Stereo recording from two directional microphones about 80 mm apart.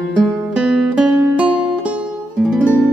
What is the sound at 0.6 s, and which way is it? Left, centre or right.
Music, centre.